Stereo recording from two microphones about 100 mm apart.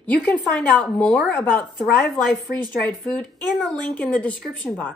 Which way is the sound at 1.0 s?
5° left (ahead or behind).